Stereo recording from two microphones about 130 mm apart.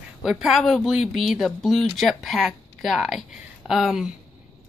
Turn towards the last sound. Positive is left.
turn(degrees=-5)  # may be behind; listen again after turning